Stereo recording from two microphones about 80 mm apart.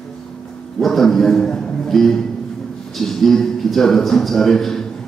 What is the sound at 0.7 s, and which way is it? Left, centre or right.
A man's voice, centre.